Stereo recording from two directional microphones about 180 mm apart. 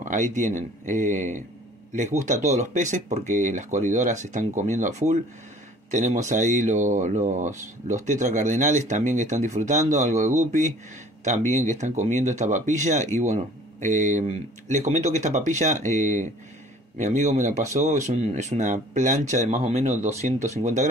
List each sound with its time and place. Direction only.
0.0 s speech: 45° right (ahead or behind)
11.8 s speech: 40° right (ahead or behind)